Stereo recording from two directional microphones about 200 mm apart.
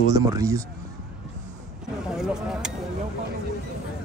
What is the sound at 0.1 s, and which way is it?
Speech, 15° right (ahead or behind).